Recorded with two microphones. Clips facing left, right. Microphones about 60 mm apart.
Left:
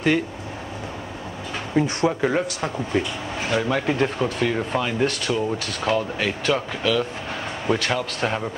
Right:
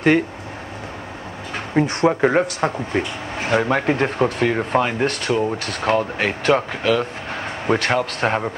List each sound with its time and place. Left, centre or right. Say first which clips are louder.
1.5 s speech: right 2 dB; right